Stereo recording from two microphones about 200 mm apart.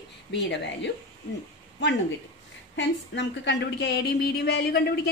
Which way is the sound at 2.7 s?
60° left (ahead or behind).